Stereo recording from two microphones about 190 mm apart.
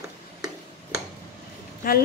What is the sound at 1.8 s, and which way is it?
Speech, 50° left (ahead or behind).